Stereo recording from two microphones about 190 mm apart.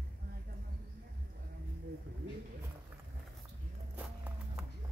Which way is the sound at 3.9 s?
5° right (ahead or behind).